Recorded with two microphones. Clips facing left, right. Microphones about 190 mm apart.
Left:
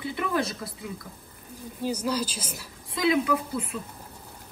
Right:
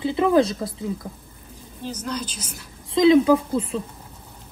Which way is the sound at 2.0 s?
5° left (ahead or behind).